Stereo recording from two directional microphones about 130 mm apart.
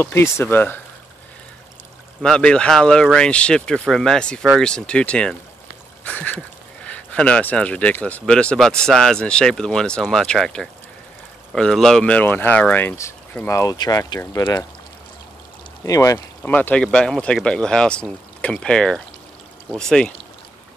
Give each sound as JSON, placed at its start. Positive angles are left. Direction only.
{"t": 0.0, "sound": "speech", "side_deg": 20}
{"t": 2.2, "sound": "speech", "side_deg": 5}
{"t": 15.8, "sound": "speech", "side_deg": 25}
{"t": 16.4, "sound": "speech", "side_deg": 15}